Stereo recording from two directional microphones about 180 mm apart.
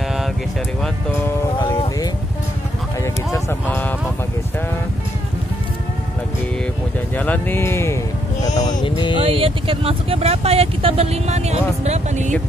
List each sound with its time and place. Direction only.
1.1 s speech: 15° left (ahead or behind)
3.3 s speech: 15° left (ahead or behind)
7.2 s speech: 10° left (ahead or behind)
8.8 s a sound: 30° left (ahead or behind)
9.2 s speech: 30° right (ahead or behind)